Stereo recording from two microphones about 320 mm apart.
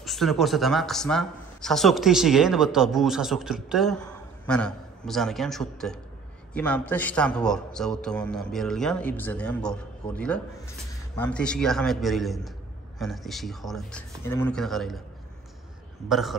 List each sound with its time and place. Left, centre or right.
0.0 s speech: centre
16.1 s speech: centre